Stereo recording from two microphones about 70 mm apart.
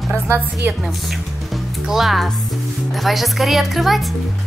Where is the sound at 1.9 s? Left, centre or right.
Centre.